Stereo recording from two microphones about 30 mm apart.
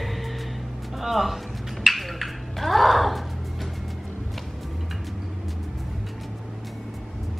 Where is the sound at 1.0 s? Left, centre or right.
Centre.